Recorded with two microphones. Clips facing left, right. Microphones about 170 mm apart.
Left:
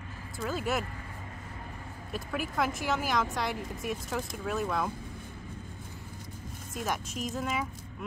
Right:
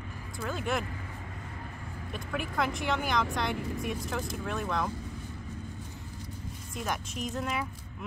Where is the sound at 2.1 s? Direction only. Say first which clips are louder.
Left 1 dB; 5° left (ahead or behind).